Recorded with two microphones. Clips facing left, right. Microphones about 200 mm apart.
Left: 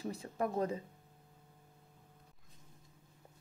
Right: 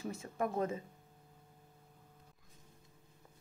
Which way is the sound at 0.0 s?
35° left (ahead or behind).